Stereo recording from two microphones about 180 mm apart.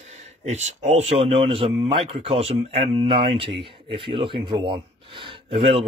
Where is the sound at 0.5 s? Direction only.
40° right (ahead or behind).